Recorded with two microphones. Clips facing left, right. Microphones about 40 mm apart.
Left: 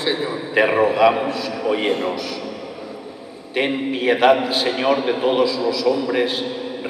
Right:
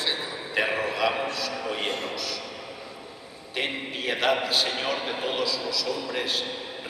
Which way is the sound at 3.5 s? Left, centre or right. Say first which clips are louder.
Left 9 dB; centre.